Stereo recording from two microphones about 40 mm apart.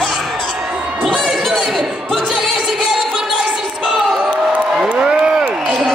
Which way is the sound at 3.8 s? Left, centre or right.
Centre.